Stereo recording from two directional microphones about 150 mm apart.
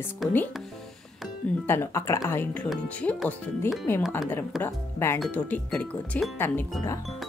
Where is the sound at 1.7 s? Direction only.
15° left (ahead or behind).